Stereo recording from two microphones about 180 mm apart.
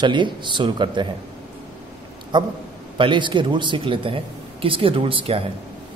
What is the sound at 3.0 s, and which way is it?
Speech, 25° right (ahead or behind).